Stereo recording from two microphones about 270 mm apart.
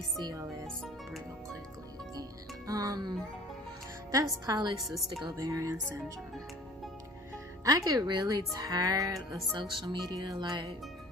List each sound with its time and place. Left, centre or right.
0.2 s speech: centre
2.1 s speech: centre
7.6 s speech: centre